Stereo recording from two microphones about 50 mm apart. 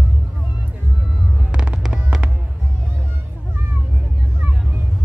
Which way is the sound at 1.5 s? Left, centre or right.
Centre.